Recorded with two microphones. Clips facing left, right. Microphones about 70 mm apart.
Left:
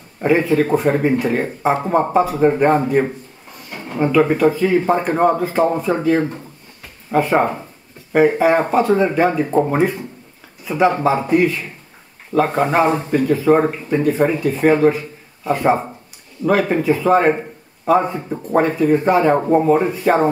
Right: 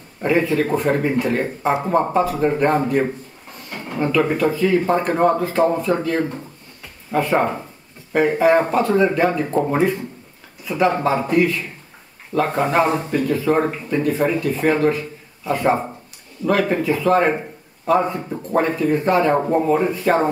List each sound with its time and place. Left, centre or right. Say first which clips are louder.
0.4 s speech: left 3 dB; centre
3.7 s a sound: left 1 dB; centre
4.0 s speech: left 4 dB; centre
7.1 s speech: left 3 dB; left
8.2 s speech: left 2 dB; centre
8.9 s a man's voice: right 1 dB; centre